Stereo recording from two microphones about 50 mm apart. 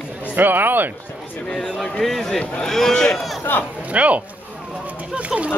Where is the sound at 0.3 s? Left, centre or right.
Right.